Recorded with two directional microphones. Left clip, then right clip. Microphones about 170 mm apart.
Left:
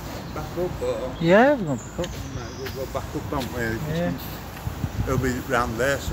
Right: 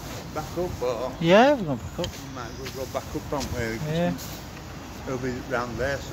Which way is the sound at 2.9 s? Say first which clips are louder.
Right 1 dB; 60° right (ahead or behind).